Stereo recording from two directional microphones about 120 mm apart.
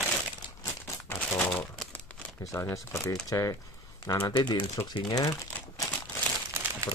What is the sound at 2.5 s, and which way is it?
Speech, 20° left (ahead or behind).